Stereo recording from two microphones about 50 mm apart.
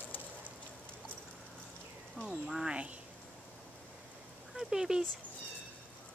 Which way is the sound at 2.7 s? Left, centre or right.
Right.